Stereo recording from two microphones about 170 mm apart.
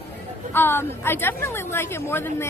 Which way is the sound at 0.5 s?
15° left (ahead or behind).